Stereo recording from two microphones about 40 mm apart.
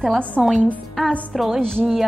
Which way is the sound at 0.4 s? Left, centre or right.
Right.